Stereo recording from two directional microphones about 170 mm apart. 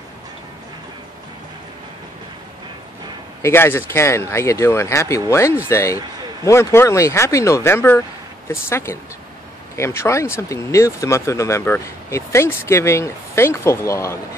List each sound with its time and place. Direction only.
3.4 s speech: 15° left (ahead or behind)